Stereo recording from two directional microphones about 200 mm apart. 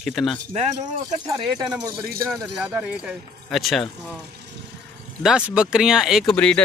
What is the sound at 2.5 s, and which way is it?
Speech, 5° right (ahead or behind).